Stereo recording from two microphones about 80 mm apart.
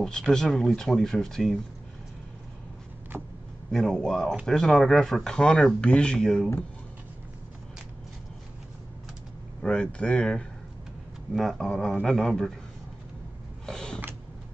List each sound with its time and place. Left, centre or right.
0.0 s speech: centre
3.7 s a man's voice: centre
9.6 s a man's voice: centre
11.3 s a man's voice: centre
13.7 s a sound: centre